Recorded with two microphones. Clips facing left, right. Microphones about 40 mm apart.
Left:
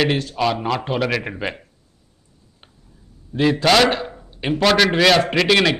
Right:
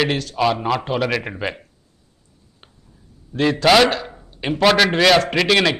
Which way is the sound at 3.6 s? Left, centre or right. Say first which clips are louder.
Right 3 dB; centre.